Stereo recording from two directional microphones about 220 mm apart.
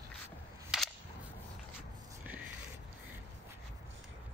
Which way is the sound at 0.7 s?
5° right (ahead or behind).